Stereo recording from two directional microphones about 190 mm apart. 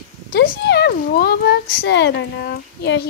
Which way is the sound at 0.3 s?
60° left (ahead or behind).